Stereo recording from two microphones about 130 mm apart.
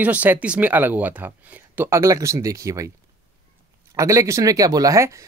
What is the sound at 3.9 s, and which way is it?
Speech, 25° right (ahead or behind).